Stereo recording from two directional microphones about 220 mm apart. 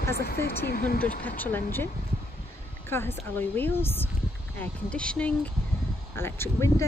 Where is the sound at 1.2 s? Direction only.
10° left (ahead or behind).